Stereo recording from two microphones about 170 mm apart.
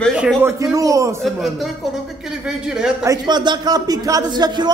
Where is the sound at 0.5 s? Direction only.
20° right (ahead or behind).